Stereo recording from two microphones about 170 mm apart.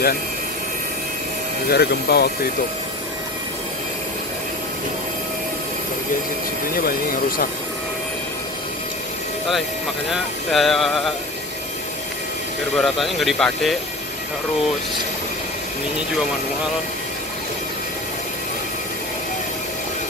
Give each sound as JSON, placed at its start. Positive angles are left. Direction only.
{"t": 1.7, "sound": "speech", "side_deg": 70}
{"t": 10.1, "sound": "speech", "side_deg": 0}
{"t": 12.7, "sound": "speech", "side_deg": 0}